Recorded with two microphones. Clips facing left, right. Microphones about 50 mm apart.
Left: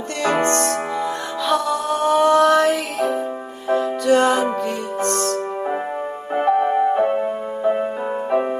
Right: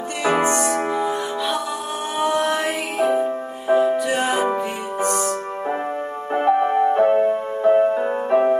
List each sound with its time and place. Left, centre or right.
0.2 s music: centre